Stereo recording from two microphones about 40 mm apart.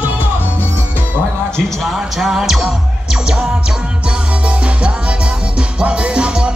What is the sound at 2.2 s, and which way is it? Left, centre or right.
Music, centre.